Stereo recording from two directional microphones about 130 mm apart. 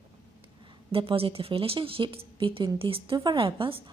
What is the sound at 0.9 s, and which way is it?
Speech, 45° right (ahead or behind).